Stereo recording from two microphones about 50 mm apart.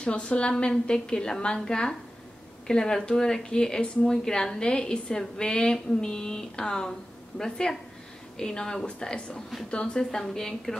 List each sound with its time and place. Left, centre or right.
0.0 s a woman's voice: left